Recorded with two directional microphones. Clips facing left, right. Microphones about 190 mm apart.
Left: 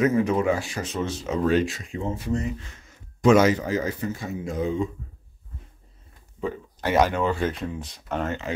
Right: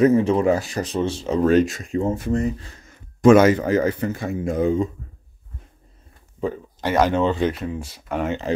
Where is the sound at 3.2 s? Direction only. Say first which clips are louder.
Right 5 dB; 55° right (ahead or behind).